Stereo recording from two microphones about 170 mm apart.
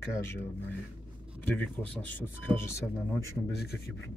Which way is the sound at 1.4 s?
10° left (ahead or behind).